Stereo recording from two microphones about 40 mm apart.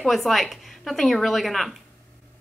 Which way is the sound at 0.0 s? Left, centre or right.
Centre.